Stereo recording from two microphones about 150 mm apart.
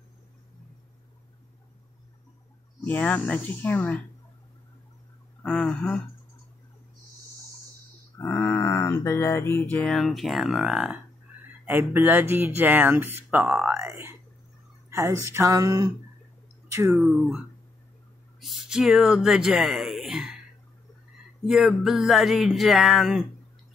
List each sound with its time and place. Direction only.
2.8 s speech: 10° left (ahead or behind)
5.4 s speech: 5° left (ahead or behind)
8.2 s a sound: 10° left (ahead or behind)
9.8 s music: 5° left (ahead or behind)
11.6 s speech: 15° right (ahead or behind)
13.7 s speech: 20° right (ahead or behind)
17.0 s speech: 5° right (ahead or behind)
18.4 s speech: centre (ahead or behind)
21.5 s music: centre (ahead or behind)